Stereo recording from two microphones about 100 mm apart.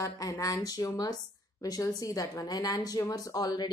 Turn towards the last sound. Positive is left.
turn(degrees=40)  # may be behind; listen again after turning